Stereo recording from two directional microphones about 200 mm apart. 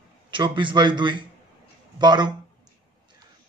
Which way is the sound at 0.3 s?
25° right (ahead or behind).